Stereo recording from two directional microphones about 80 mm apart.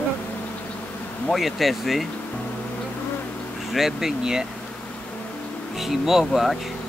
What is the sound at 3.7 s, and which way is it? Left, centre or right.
Speech, centre.